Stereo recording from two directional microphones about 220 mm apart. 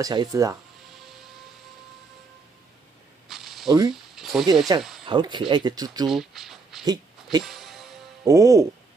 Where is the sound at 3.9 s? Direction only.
Centre (ahead or behind).